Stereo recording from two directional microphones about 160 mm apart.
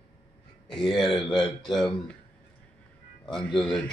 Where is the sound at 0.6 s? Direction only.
Centre (ahead or behind).